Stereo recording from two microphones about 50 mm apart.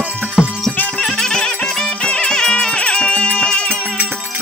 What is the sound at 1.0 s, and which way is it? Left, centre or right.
Music, centre.